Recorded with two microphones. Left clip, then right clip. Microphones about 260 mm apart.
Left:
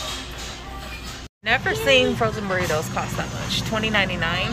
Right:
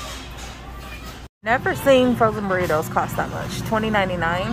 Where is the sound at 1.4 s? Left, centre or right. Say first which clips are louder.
Right 1 dB; centre.